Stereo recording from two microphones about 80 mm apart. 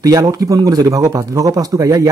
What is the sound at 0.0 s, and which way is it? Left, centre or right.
Speech, right.